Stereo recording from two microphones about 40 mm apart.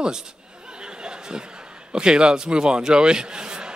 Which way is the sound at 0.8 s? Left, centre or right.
Right.